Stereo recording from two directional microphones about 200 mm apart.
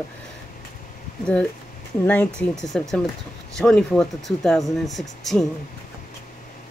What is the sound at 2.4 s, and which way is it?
A woman's voice, centre (ahead or behind).